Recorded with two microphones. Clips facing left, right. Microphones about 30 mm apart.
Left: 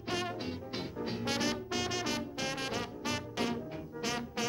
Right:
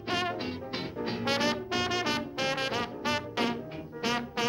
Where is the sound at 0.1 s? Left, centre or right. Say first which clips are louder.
Right 5 dB; right.